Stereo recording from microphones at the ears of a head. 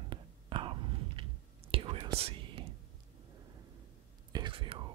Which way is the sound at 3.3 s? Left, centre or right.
Right.